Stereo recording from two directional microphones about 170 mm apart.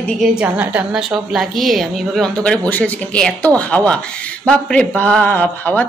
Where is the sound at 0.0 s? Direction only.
Centre (ahead or behind).